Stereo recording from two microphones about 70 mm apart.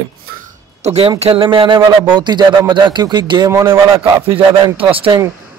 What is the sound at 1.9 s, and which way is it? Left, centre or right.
Speech, right.